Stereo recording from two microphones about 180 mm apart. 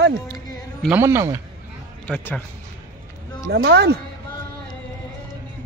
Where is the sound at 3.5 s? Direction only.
70° right (ahead or behind).